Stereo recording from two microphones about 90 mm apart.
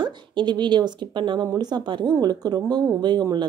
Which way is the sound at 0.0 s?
60° right (ahead or behind).